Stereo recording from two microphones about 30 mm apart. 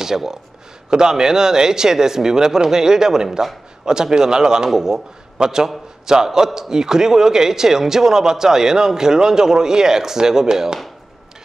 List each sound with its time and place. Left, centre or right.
0.0 s a man's voice: centre